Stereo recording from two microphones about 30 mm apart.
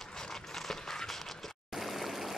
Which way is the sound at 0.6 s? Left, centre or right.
Centre.